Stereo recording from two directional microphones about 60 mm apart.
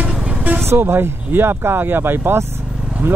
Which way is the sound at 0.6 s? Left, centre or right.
Right.